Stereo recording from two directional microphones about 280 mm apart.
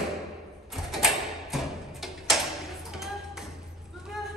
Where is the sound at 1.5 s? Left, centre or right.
Centre.